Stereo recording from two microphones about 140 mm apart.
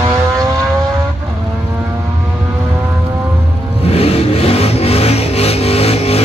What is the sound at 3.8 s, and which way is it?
Vehicle, 45° left (ahead or behind).